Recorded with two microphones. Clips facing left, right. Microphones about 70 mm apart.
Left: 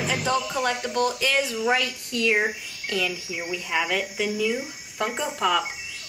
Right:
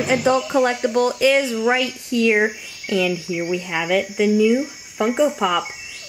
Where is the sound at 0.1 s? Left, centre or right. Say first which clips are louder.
Right 10 dB; centre.